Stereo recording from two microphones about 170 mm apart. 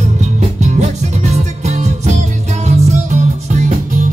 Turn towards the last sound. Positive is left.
turn(degrees=-45)  # may be behind; listen again after turning